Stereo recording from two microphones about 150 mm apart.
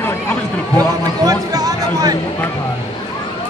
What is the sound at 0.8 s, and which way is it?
Speech, 25° right (ahead or behind).